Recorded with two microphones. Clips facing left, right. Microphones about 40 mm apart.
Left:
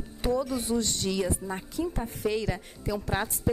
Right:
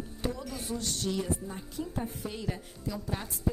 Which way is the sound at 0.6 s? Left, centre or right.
Left.